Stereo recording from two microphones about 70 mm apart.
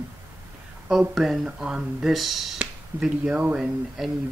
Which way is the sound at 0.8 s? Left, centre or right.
Centre.